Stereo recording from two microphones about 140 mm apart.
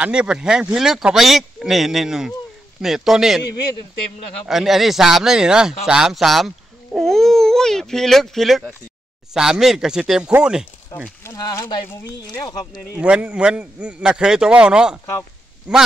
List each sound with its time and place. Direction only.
0.0 s speech: 5° right (ahead or behind)
4.5 s speech: centre (ahead or behind)
11.2 s speech: 25° left (ahead or behind)
12.9 s a man's voice: 10° right (ahead or behind)